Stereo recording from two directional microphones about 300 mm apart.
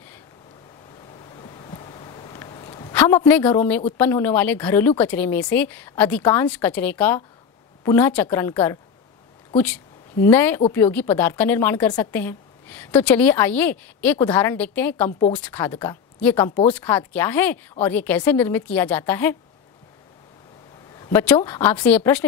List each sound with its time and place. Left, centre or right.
1.3 s a sound: centre
4.0 s a woman's voice: centre
10.2 s a woman's voice: centre
15.0 s speech: centre
15.3 s a woman's voice: centre
21.0 s a woman's voice: centre